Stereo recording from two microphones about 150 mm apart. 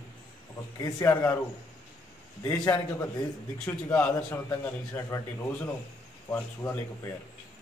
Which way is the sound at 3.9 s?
10° left (ahead or behind).